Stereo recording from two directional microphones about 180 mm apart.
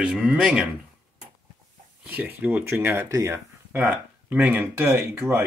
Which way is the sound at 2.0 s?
10° right (ahead or behind).